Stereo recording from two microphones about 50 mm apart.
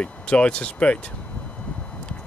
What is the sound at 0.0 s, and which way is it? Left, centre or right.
Speech, left.